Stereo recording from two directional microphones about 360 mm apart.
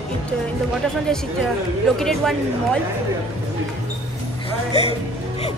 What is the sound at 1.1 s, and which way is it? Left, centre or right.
Speech, centre.